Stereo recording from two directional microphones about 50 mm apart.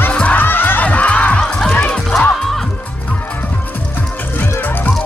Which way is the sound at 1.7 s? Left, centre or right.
Left.